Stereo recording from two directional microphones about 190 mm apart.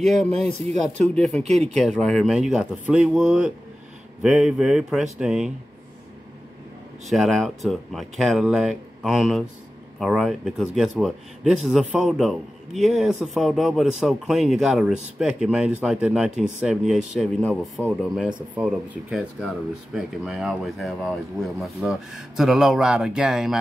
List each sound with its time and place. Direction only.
0.0 s speech: 40° right (ahead or behind)
1.0 s a man's voice: 5° left (ahead or behind)
7.1 s a man's voice: centre (ahead or behind)
18.6 s a man's voice: 5° right (ahead or behind)